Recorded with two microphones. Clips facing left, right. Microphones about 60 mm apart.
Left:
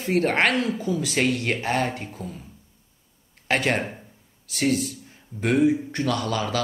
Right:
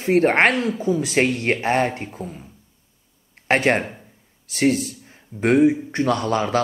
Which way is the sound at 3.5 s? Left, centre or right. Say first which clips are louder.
Right 5 dB; right.